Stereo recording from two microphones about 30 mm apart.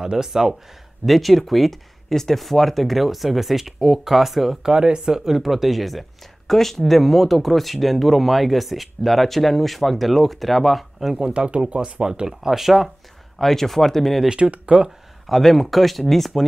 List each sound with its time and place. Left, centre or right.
0.0 s speech: centre
1.0 s speech: centre
2.1 s speech: centre
4.6 s speech: right
5.4 s speech: centre
11.2 s speech: right
12.0 s speech: right; by 12.9 s centre
13.4 s speech: centre
14.3 s speech: right
15.2 s speech: centre